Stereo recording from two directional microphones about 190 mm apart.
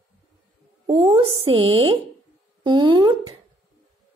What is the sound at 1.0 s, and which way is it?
Speech, 25° right (ahead or behind).